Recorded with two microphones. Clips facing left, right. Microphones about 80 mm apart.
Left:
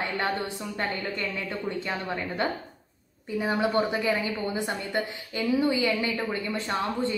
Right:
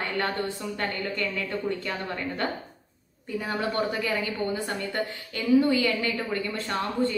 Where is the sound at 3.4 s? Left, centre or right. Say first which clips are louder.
Left 3 dB; centre.